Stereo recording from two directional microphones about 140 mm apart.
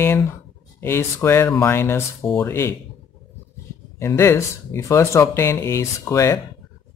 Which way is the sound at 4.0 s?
20° left (ahead or behind).